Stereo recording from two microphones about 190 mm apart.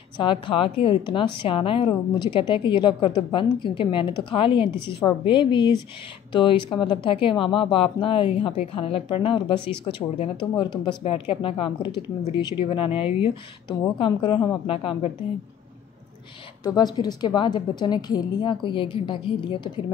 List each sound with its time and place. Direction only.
0.2 s speech: 25° left (ahead or behind)
16.6 s speech: 20° left (ahead or behind)